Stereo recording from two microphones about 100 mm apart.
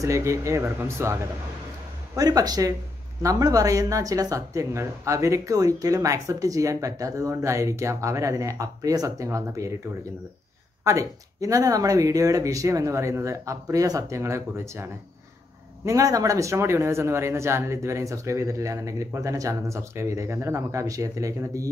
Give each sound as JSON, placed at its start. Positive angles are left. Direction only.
{"t": 0.0, "sound": "speech", "side_deg": -30}
{"t": 2.1, "sound": "speech", "side_deg": -40}
{"t": 10.8, "sound": "speech", "side_deg": -30}